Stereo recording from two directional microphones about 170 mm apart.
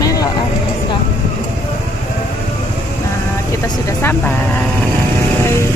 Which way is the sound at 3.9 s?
15° left (ahead or behind).